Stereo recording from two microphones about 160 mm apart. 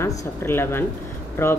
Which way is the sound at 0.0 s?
15° left (ahead or behind).